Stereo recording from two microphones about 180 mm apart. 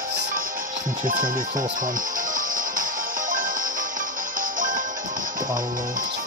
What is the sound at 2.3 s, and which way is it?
Music, 50° right (ahead or behind).